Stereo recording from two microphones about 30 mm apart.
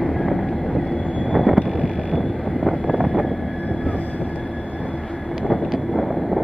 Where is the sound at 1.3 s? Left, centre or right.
Centre.